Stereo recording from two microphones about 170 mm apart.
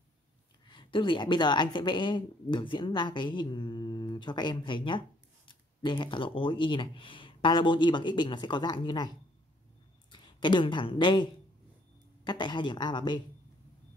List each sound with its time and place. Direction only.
0.7 s a woman's voice: 30° left (ahead or behind)
10.1 s speech: 25° left (ahead or behind)
12.3 s a woman's voice: 25° left (ahead or behind)